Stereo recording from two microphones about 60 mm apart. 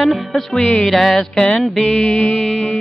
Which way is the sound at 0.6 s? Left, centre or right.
Left.